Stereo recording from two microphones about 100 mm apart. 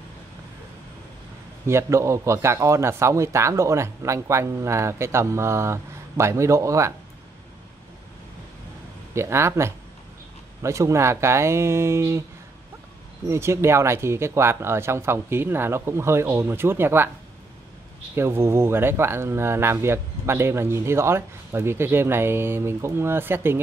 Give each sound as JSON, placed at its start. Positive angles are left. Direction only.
{"t": 1.7, "sound": "speech", "side_deg": -30}
{"t": 9.1, "sound": "speech", "side_deg": -25}
{"t": 13.3, "sound": "speech", "side_deg": -25}
{"t": 18.1, "sound": "speech", "side_deg": -25}